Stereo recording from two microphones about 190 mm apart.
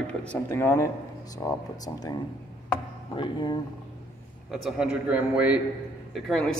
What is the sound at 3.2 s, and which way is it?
Speech, 25° left (ahead or behind).